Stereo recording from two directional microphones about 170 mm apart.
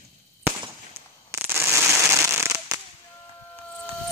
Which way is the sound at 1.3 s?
15° right (ahead or behind).